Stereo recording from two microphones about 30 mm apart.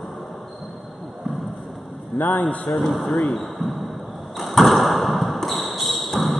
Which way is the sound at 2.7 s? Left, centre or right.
Centre.